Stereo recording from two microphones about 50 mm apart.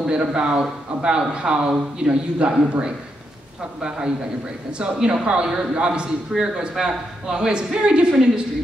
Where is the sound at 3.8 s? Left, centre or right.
Centre.